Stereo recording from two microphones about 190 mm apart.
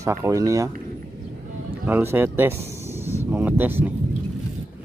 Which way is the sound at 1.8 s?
10° right (ahead or behind).